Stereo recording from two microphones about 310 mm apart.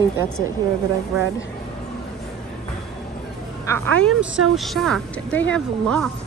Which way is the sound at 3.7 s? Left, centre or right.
Right.